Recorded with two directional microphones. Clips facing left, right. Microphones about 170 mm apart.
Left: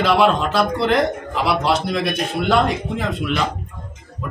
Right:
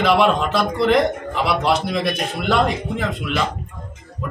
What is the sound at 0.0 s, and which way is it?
A man's voice, centre (ahead or behind).